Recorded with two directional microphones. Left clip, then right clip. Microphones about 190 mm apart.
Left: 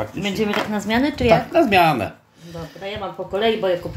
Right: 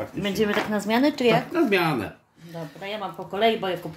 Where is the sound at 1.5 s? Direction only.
30° left (ahead or behind).